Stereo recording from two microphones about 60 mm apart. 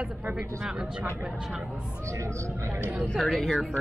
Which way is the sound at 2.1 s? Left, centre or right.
Right.